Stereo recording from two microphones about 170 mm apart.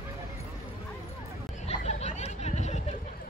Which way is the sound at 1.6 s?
40° left (ahead or behind).